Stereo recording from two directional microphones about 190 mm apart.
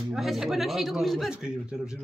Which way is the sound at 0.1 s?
Centre (ahead or behind).